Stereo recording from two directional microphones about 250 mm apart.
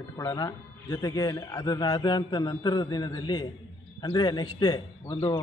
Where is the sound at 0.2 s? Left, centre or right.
Centre.